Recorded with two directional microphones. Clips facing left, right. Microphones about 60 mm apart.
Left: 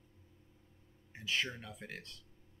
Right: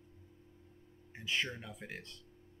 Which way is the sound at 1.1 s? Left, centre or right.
Centre.